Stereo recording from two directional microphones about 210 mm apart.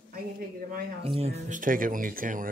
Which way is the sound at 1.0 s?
30° right (ahead or behind).